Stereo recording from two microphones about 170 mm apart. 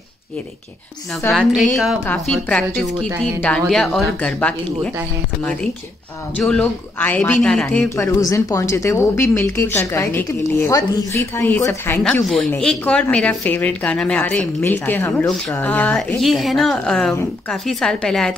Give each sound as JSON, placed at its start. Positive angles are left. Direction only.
{"t": 1.3, "sound": "a woman's voice", "side_deg": 0}
{"t": 12.3, "sound": "a woman's voice", "side_deg": 5}